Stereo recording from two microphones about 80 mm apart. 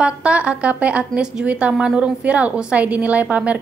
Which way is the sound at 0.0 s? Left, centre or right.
Centre.